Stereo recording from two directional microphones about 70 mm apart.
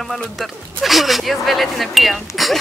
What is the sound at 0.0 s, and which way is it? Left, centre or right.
Speech, centre.